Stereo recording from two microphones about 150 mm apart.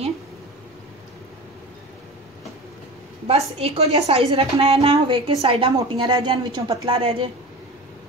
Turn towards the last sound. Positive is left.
turn(degrees=-40)  # may be behind; listen again after turning